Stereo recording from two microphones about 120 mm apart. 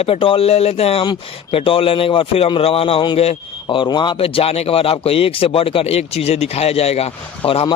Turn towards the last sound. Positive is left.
turn(degrees=55)  # may be behind; listen again after turning